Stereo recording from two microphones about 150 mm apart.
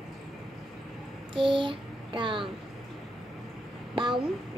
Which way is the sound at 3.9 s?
35° right (ahead or behind).